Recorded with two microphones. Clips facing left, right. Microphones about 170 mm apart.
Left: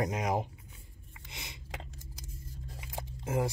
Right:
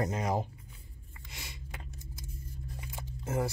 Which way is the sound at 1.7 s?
90° left.